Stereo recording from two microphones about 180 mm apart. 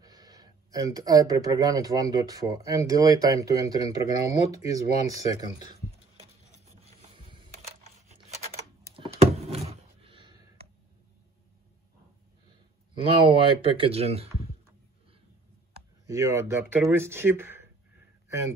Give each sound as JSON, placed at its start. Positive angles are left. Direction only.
{"t": 0.0, "sound": "speech", "side_deg": -20}
{"t": 6.6, "sound": "a sound", "side_deg": -35}
{"t": 12.9, "sound": "speech", "side_deg": -25}
{"t": 16.1, "sound": "speech", "side_deg": -15}